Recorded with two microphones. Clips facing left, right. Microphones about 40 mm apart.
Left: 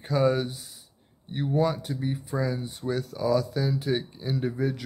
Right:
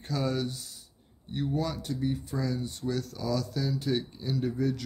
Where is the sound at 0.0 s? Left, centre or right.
Centre.